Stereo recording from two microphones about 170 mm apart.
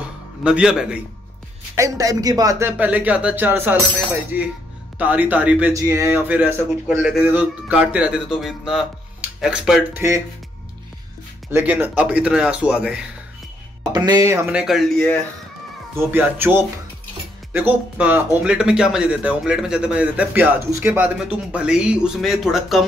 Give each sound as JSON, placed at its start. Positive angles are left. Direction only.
{"t": 0.0, "sound": "music", "side_deg": -5}
{"t": 1.8, "sound": "speech", "side_deg": -20}
{"t": 2.8, "sound": "speech", "side_deg": -10}
{"t": 11.5, "sound": "speech", "side_deg": -10}
{"t": 13.9, "sound": "speech", "side_deg": -20}
{"t": 16.1, "sound": "speech", "side_deg": -10}